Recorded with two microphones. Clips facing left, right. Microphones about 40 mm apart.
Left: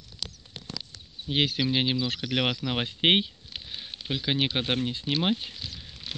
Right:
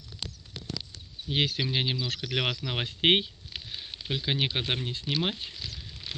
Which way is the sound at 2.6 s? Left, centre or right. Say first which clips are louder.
Left 1 dB; centre.